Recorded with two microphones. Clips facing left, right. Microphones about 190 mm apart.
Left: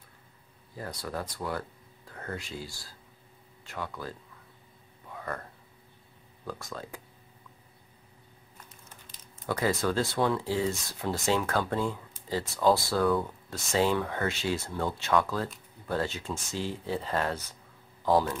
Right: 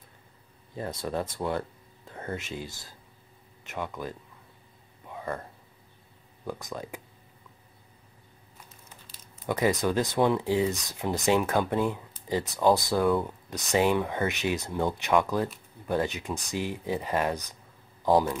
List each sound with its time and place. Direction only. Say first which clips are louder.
0.7 s speech: right 5 dB; 25° right (ahead or behind)
5.1 s a sound: right 3 dB; 20° right (ahead or behind)
6.4 s speech: right 3 dB; 15° right (ahead or behind)
9.1 s speech: right 2 dB; 15° right (ahead or behind)